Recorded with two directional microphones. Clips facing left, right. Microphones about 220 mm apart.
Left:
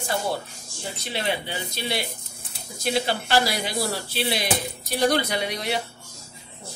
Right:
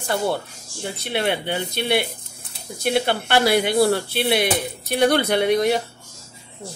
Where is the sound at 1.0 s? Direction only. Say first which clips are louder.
Right 5 dB; 60° right (ahead or behind).